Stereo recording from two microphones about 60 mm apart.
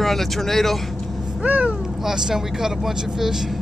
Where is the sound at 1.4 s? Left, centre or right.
Right.